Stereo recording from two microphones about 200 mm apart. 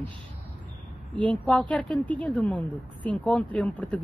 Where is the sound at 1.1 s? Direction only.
5° left (ahead or behind).